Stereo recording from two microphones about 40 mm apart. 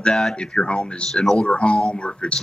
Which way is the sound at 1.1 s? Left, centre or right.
Centre.